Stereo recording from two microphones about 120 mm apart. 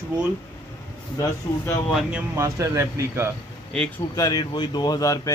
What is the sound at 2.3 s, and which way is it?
Speech, 25° right (ahead or behind).